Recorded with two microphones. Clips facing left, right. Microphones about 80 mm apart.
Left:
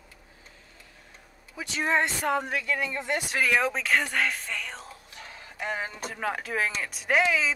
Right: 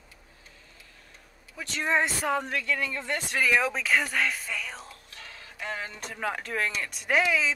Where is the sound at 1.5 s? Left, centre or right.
Centre.